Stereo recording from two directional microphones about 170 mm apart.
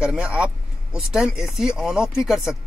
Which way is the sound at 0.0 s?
5° right (ahead or behind).